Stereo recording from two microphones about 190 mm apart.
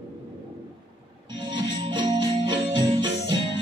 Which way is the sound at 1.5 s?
25° right (ahead or behind).